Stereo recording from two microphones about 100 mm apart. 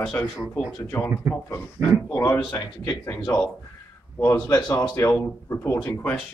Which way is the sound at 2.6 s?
40° left (ahead or behind).